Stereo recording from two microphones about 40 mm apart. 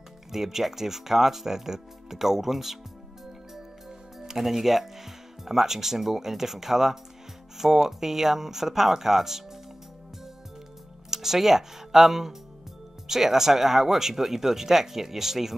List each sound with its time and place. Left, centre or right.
0.3 s speech: centre
4.2 s speech: centre
11.1 s speech: centre